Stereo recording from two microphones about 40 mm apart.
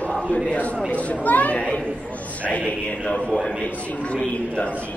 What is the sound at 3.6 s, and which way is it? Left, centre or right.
Speech, left.